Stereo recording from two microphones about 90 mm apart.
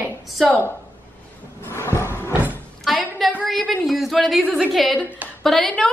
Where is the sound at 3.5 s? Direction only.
Centre (ahead or behind).